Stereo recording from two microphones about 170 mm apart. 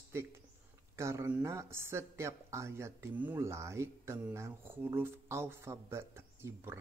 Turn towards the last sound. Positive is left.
turn(degrees=-15)  # may be behind; listen again after turning